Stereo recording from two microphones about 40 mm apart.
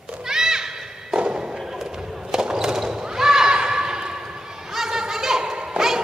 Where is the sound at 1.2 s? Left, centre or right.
Centre.